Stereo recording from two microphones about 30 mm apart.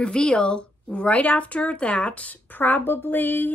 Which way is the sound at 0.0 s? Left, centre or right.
Left.